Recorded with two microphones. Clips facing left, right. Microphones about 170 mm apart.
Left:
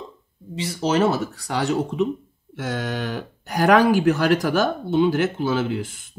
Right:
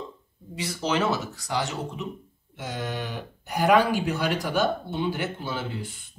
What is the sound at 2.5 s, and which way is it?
Speech, 90° left.